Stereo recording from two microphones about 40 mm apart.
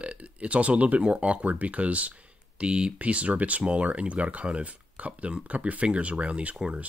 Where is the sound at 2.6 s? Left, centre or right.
Right.